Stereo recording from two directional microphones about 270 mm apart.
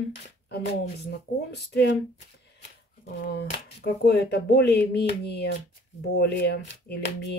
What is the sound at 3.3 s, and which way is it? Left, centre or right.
Speech, left.